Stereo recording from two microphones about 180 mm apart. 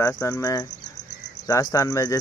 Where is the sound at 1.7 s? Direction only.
20° left (ahead or behind).